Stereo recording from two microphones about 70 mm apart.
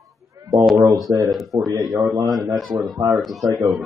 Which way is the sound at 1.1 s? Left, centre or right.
Right.